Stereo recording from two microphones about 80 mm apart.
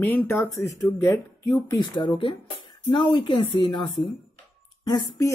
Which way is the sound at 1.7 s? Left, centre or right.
Left.